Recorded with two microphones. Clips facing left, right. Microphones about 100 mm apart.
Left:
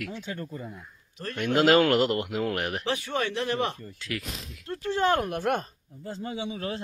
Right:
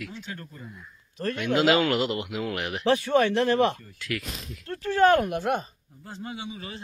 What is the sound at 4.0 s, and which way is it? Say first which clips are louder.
Speech: right 2 dB; 30° left (ahead or behind).